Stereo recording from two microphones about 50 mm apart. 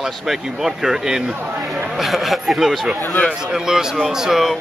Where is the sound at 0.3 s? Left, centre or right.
Centre.